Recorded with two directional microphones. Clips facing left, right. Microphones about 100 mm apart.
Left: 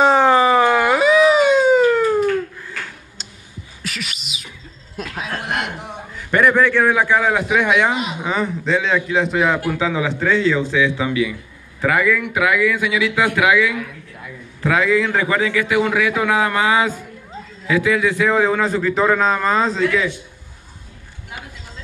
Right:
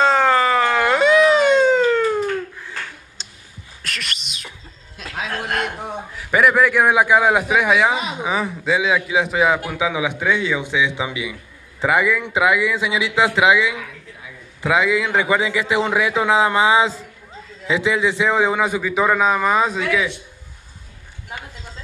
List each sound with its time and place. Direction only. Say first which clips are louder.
0.0 s a sound: left 3 dB; 15° left (ahead or behind)
3.8 s bird: even; centre (ahead or behind)
5.0 s chuckle: left 7 dB; 45° left (ahead or behind)
6.1 s a man's voice: left 1 dB; 5° right (ahead or behind)